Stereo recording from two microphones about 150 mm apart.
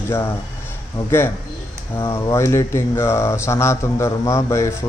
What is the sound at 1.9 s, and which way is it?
A man's voice, 20° left (ahead or behind).